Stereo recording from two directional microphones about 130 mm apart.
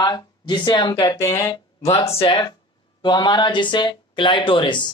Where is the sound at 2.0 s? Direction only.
45° left (ahead or behind).